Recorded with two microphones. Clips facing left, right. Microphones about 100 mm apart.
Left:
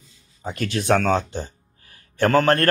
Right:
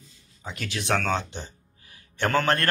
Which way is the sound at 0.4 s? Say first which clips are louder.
Left 8 dB; 45° left (ahead or behind).